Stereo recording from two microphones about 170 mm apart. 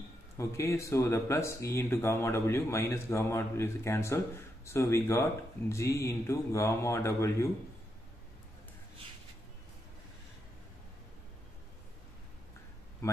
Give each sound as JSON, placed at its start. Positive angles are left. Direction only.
{"t": 0.4, "sound": "speech", "side_deg": 15}